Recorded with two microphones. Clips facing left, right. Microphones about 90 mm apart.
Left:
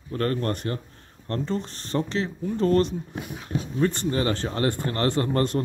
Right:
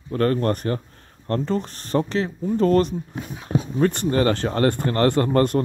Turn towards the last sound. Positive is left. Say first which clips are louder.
# right 5 dB
turn(degrees=-45)  # may be behind; listen again after turning